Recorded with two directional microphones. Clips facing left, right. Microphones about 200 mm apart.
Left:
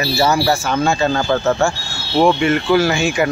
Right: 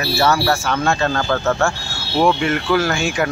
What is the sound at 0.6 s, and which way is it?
Speech, 5° left (ahead or behind).